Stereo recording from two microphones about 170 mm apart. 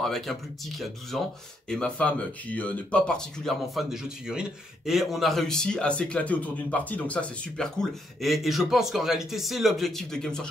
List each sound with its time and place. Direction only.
0.0 s speech: centre (ahead or behind)